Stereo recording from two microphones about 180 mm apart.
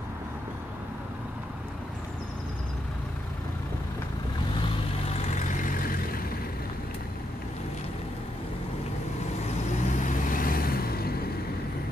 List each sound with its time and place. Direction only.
5.1 s vehicle: 45° left (ahead or behind)
9.9 s vehicle: 45° left (ahead or behind)